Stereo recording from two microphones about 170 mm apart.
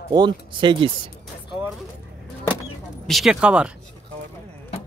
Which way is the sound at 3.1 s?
Centre (ahead or behind).